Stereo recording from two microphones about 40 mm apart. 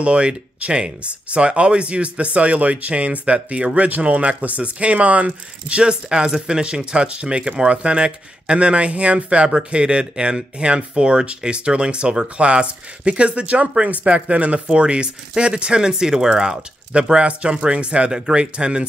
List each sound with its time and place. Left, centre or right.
0.0 s speech: right; by 16.5 s centre
16.9 s speech: right